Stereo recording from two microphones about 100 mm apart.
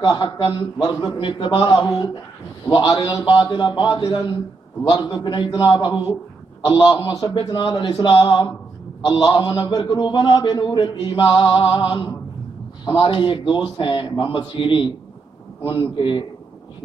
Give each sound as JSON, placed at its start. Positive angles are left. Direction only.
{"t": 0.0, "sound": "a man's voice", "side_deg": 40}
{"t": 1.0, "sound": "a man's voice", "side_deg": 60}
{"t": 12.8, "sound": "a man's voice", "side_deg": 55}